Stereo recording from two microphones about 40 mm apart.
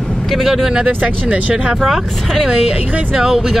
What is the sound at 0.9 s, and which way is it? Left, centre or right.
Speech, right.